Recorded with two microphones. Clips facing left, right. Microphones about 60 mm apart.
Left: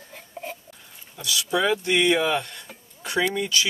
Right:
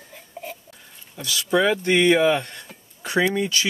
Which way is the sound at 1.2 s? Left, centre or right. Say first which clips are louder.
Right 3 dB; right.